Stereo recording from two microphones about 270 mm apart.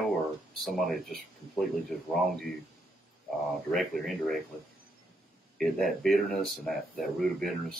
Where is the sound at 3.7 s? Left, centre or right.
Centre.